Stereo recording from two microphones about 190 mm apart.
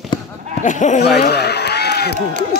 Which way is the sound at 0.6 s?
40° left (ahead or behind).